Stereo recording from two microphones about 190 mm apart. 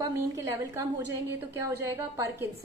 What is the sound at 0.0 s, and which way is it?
Speech, 15° right (ahead or behind).